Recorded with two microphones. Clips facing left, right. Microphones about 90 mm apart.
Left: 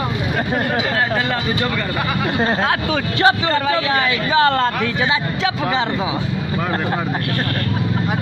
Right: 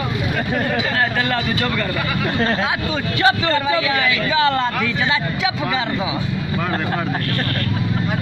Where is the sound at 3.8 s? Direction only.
35° left (ahead or behind).